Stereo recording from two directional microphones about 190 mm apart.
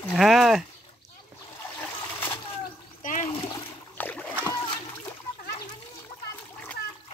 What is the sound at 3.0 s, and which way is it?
Splash, 45° left (ahead or behind).